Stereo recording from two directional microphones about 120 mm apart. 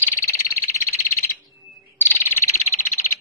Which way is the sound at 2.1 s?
15° left (ahead or behind).